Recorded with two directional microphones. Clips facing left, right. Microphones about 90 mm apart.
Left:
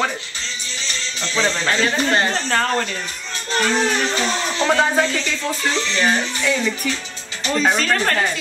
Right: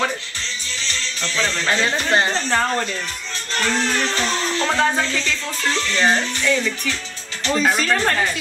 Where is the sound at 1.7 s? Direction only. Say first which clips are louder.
Right 2 dB; 20° right (ahead or behind).